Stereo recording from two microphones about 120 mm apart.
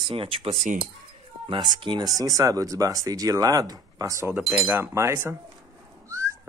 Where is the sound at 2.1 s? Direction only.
30° right (ahead or behind).